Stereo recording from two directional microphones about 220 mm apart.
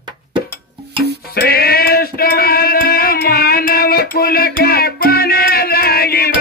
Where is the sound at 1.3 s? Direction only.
45° left (ahead or behind).